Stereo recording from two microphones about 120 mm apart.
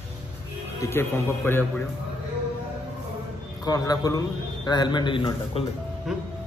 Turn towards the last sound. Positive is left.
turn(degrees=-5)  # may be behind; listen again after turning